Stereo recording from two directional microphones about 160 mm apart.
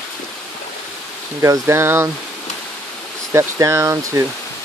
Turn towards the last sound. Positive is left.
turn(degrees=-20)  # may be behind; listen again after turning